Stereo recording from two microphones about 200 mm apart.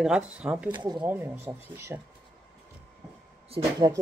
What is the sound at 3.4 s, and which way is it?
Speech, 25° right (ahead or behind).